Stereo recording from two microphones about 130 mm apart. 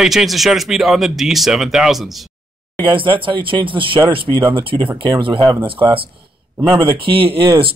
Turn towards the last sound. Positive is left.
turn(degrees=-40)  # may be behind; listen again after turning